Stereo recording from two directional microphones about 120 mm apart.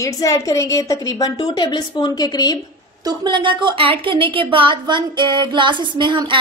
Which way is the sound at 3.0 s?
40° right (ahead or behind).